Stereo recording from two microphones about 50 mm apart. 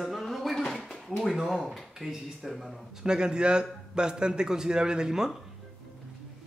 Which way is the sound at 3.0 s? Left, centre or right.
Centre.